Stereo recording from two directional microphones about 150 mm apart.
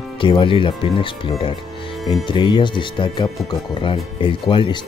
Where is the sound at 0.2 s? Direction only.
35° left (ahead or behind).